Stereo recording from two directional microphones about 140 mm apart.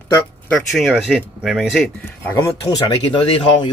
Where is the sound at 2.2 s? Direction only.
15° left (ahead or behind).